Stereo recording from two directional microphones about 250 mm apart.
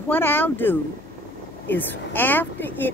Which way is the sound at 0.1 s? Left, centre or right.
Centre.